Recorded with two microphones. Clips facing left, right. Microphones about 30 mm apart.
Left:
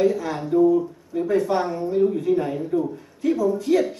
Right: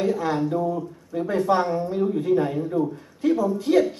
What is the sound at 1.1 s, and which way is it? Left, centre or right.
A woman's voice, centre.